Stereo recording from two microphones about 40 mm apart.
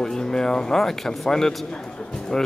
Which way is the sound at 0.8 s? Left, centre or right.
Centre.